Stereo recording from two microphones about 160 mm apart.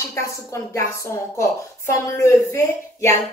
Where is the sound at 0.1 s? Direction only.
20° left (ahead or behind).